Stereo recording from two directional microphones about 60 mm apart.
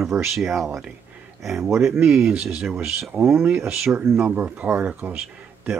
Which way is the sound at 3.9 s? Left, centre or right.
Right.